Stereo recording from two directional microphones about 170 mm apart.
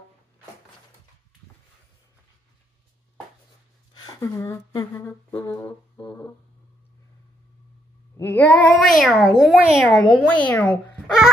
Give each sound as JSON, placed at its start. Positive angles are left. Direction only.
{"t": 3.9, "sound": "a sound", "side_deg": 20}
{"t": 4.9, "sound": "a child's voice", "side_deg": 15}
{"t": 8.2, "sound": "a child's voice", "side_deg": 10}